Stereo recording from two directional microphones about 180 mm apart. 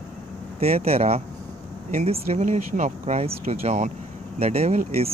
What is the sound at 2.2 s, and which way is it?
Speech, 40° right (ahead or behind).